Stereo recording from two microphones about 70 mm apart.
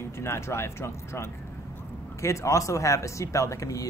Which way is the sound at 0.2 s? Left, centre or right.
Left.